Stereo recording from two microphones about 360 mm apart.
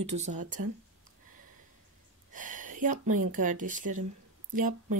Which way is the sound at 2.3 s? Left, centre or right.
Right.